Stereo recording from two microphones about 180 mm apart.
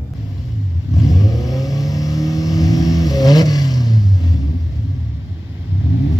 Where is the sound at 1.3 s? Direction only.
20° left (ahead or behind).